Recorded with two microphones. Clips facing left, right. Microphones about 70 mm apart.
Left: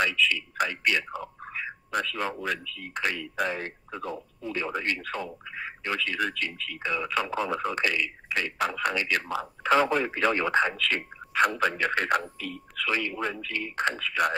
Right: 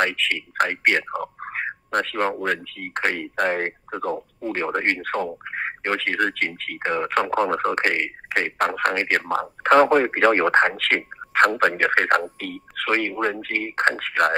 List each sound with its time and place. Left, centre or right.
0.0 s speech: right